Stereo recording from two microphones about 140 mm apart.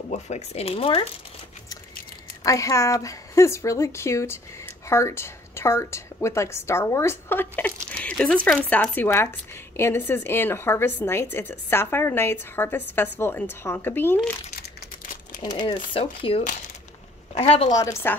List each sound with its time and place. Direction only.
0.1 s speech: 50° left (ahead or behind)
2.4 s a woman's voice: 20° left (ahead or behind)
15.6 s speech: 35° left (ahead or behind)
17.6 s a woman's voice: 25° left (ahead or behind)